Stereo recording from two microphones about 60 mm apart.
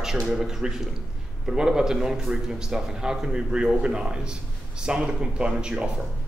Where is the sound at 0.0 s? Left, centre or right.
Centre.